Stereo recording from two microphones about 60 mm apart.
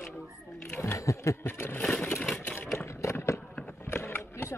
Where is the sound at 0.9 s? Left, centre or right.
Left.